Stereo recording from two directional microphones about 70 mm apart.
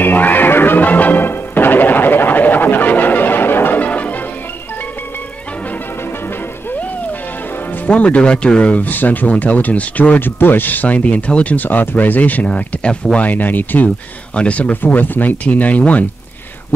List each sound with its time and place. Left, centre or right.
0.0 s music: left
7.8 s speech: centre